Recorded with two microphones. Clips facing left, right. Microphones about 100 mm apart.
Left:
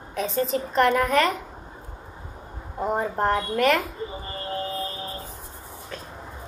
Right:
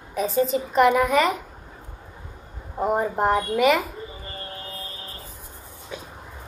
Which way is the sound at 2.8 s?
5° right (ahead or behind).